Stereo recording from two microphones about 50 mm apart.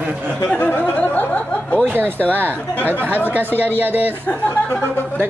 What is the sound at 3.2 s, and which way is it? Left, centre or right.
Speech, right.